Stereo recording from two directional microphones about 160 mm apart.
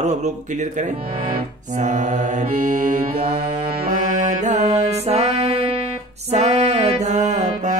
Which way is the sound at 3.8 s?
50° right (ahead or behind).